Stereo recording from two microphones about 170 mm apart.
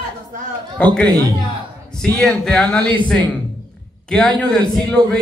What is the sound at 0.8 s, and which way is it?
A man's voice, 5° left (ahead or behind).